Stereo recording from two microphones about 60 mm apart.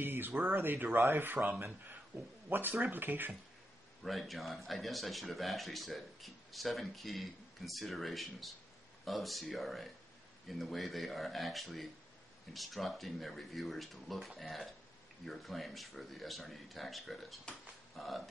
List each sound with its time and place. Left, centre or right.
0.0 s a sound: right
0.4 s speech: right
2.7 s speech: right
4.0 s speech: centre